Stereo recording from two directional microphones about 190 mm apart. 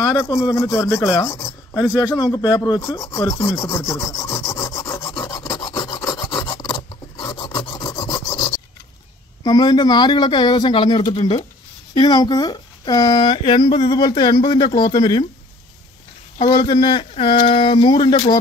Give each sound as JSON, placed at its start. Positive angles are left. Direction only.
{"t": 0.0, "sound": "a man's voice", "side_deg": 15}
{"t": 2.1, "sound": "rub", "side_deg": 20}
{"t": 5.1, "sound": "filing", "side_deg": 15}
{"t": 9.4, "sound": "speech", "side_deg": 20}
{"t": 16.3, "sound": "speech", "side_deg": 25}